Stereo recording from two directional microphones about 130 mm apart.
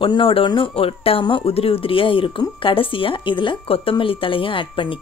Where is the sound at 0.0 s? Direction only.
40° left (ahead or behind).